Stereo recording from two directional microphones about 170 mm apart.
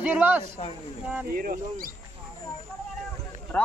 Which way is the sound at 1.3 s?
55° right (ahead or behind).